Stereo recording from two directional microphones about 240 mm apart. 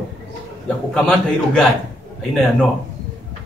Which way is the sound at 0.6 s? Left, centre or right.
Centre.